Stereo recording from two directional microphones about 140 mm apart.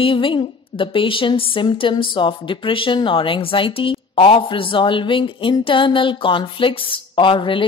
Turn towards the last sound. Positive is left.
turn(degrees=35)  # may be behind; listen again after turning